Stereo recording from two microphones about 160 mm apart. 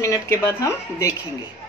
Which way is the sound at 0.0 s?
20° left (ahead or behind).